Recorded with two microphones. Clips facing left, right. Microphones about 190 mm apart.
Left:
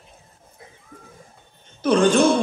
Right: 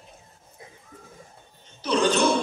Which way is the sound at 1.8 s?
50° left (ahead or behind).